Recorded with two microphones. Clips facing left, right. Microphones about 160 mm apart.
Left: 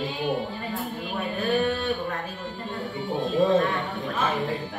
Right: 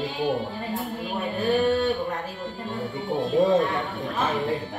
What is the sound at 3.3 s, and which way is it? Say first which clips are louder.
Music: right 1 dB; 20° right (ahead or behind).